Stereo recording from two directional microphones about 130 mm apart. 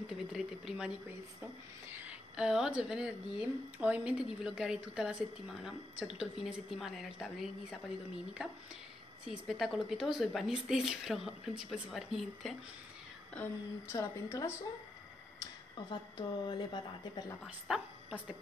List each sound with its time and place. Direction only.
0.1 s a woman's voice: 5° right (ahead or behind)
1.4 s a woman's voice: 15° right (ahead or behind)
9.2 s a woman's voice: 5° right (ahead or behind)
13.3 s a woman's voice: 15° left (ahead or behind)
15.9 s a woman's voice: 35° left (ahead or behind)
17.6 s a sound: 5° right (ahead or behind)